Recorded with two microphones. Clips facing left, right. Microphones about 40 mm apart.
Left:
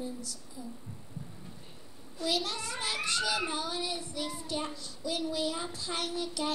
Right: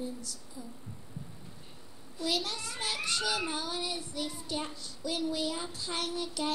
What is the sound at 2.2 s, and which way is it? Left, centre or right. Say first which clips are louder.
A child's voice: left 1 dB; centre.